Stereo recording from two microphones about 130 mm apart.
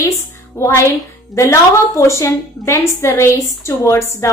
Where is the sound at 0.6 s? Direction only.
20° left (ahead or behind).